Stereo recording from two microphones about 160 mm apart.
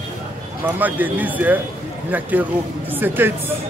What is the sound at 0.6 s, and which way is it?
Speech, 10° right (ahead or behind).